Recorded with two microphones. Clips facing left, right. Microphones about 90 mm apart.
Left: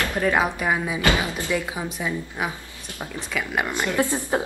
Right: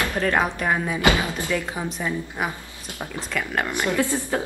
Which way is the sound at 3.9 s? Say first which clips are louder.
Left 2 dB; 20° left (ahead or behind).